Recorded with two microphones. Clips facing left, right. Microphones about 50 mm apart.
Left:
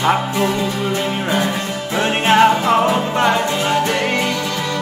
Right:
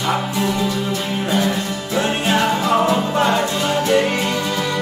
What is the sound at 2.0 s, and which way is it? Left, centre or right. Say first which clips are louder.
Music: left 5 dB; left.